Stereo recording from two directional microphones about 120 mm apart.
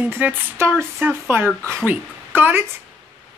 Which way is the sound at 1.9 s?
15° right (ahead or behind).